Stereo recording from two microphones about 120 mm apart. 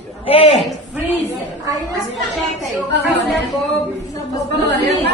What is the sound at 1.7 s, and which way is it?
Speech, 30° right (ahead or behind).